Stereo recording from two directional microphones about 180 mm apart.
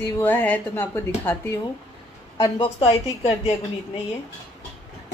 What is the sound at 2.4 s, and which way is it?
Speech, 25° left (ahead or behind).